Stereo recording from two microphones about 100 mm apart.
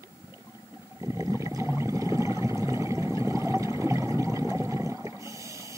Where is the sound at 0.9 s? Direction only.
35° right (ahead or behind).